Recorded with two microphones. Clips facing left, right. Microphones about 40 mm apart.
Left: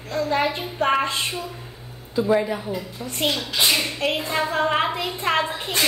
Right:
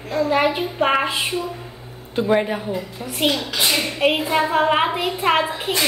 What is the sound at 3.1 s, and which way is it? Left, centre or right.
A child's voice, centre.